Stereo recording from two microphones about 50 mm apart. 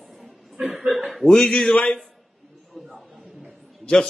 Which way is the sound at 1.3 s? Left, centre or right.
Centre.